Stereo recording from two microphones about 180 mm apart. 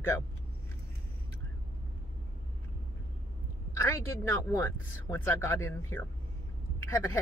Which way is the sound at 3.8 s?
15° left (ahead or behind).